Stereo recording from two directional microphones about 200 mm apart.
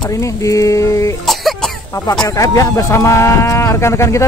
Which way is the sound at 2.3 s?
15° left (ahead or behind).